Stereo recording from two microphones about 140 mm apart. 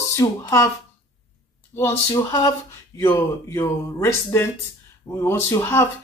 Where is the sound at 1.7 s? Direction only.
20° left (ahead or behind).